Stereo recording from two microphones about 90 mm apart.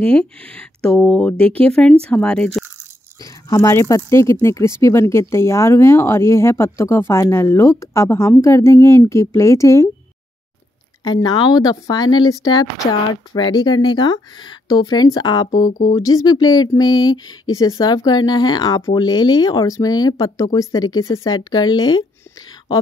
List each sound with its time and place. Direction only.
0.0 s speech: 15° left (ahead or behind)
3.2 s speech: 35° left (ahead or behind)
11.1 s speech: 50° left (ahead or behind); by 21.4 s 35° left (ahead or behind)
21.4 s speech: 55° left (ahead or behind)